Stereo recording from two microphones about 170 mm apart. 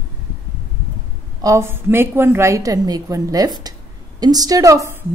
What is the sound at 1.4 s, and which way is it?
A woman's voice, 15° right (ahead or behind).